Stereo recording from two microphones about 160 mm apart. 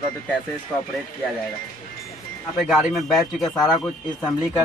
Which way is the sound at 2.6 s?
Centre (ahead or behind).